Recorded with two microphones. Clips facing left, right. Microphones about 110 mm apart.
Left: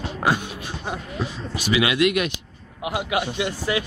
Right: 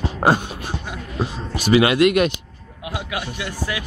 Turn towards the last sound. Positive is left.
turn(degrees=25)  # may be behind; listen again after turning